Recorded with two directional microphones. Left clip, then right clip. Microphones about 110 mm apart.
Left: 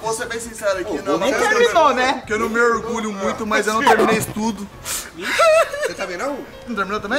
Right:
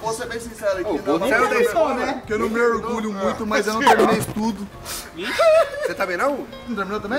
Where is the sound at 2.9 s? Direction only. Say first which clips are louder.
Left 1 dB; 5° right (ahead or behind).